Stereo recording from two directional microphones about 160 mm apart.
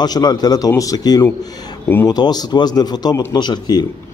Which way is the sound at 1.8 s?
15° left (ahead or behind).